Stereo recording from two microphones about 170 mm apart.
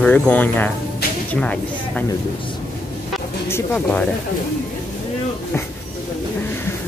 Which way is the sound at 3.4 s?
10° left (ahead or behind).